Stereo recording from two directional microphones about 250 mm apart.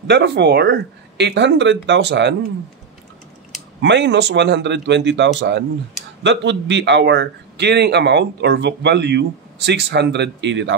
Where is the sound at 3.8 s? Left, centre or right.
Right.